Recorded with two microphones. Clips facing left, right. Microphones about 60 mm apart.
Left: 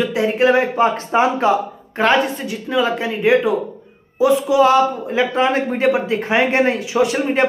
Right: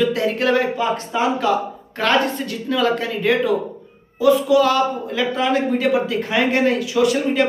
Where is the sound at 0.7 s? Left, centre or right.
Left.